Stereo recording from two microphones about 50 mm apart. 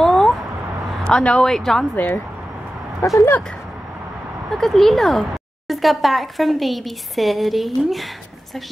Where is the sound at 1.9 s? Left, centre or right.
Left.